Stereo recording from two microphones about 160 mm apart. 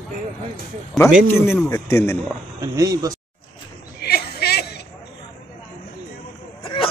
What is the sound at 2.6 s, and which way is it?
Speech, 25° right (ahead or behind).